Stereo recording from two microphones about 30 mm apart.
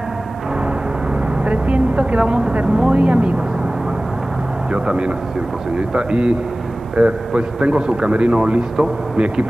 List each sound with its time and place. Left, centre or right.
1.4 s speech: right
4.7 s speech: right